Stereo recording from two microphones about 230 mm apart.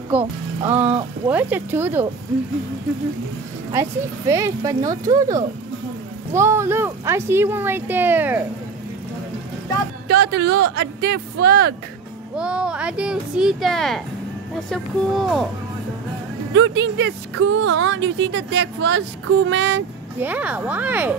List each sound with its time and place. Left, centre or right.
0.1 s speech: centre
3.8 s speech: centre
10.0 s a woman's voice: right
12.4 s speech: centre
16.5 s a woman's voice: right
20.2 s speech: centre